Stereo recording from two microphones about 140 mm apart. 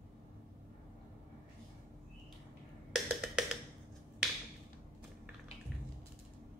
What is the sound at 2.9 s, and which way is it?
Wood block, 5° right (ahead or behind).